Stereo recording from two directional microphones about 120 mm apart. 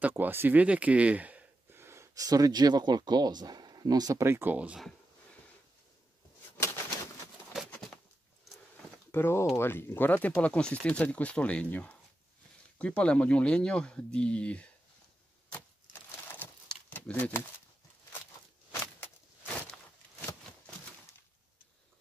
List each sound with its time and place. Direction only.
0.0 s speech: 15° right (ahead or behind)
9.1 s speech: 20° left (ahead or behind)
16.9 s speech: 15° left (ahead or behind)